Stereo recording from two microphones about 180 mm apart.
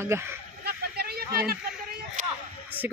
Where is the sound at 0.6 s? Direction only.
60° right (ahead or behind).